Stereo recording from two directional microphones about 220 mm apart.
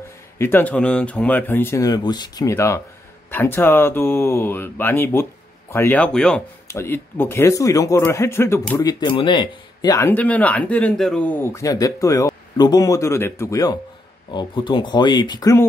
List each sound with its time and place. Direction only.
0.4 s a man's voice: 10° left (ahead or behind)